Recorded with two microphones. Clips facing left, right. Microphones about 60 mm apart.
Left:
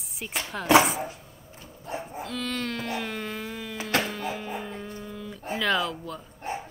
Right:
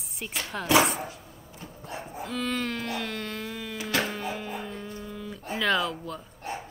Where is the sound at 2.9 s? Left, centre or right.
Centre.